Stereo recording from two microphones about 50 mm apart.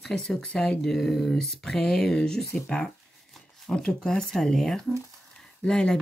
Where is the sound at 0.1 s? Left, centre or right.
Centre.